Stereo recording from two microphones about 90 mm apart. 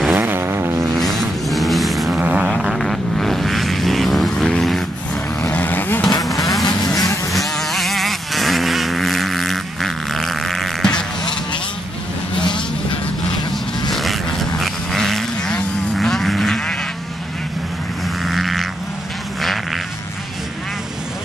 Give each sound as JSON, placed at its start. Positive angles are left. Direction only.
{"t": 0.1, "sound": "vehicle", "side_deg": -25}
{"t": 0.9, "sound": "a sound", "side_deg": 0}
{"t": 2.1, "sound": "a sound", "side_deg": -15}
{"t": 2.5, "sound": "vehicle", "side_deg": 0}
{"t": 5.4, "sound": "vehicle", "side_deg": 20}
{"t": 6.7, "sound": "vehicle", "side_deg": 5}
{"t": 13.5, "sound": "vehicle", "side_deg": 0}
{"t": 18.2, "sound": "vehicle", "side_deg": 0}